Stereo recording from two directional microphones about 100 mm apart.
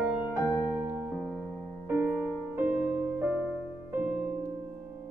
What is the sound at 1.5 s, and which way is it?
Music, 15° left (ahead or behind).